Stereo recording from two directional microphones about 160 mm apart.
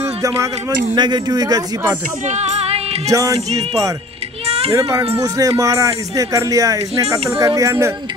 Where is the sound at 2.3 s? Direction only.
45° right (ahead or behind).